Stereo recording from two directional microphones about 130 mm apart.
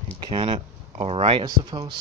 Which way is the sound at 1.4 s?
35° right (ahead or behind).